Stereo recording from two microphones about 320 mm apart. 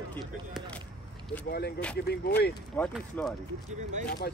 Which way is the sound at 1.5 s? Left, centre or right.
Left.